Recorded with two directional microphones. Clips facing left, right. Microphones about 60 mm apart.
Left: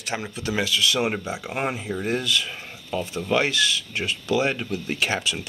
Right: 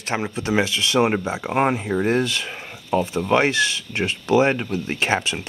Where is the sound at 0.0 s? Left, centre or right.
Right.